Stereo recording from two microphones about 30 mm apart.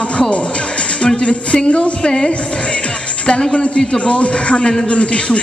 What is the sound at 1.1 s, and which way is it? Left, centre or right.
Speech, left.